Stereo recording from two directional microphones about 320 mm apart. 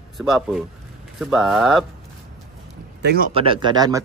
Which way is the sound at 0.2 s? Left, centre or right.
Centre.